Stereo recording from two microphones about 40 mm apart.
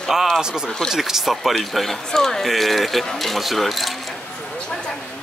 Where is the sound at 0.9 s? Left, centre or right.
Centre.